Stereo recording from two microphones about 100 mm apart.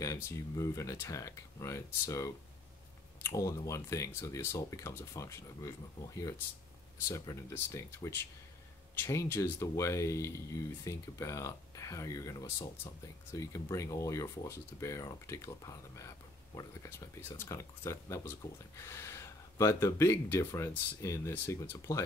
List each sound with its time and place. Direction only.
0.0 s speech: 30° left (ahead or behind)
17.4 s speech: 25° left (ahead or behind)